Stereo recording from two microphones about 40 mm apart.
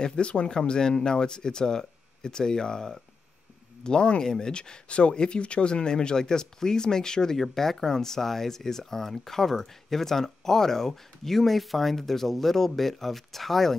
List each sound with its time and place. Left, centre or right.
0.0 s speech: left
7.3 s speech: centre